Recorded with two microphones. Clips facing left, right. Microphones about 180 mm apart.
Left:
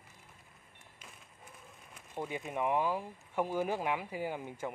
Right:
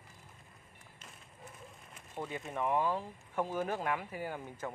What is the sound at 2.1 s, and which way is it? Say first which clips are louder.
Speech: left 2 dB; 15° left (ahead or behind).